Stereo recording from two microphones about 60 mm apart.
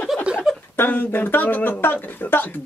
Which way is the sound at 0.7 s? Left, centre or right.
Left.